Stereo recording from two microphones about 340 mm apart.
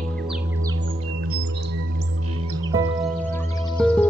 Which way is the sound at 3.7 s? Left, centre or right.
Centre.